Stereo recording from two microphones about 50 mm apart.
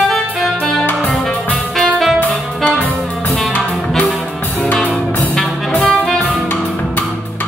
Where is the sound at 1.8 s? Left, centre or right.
Centre.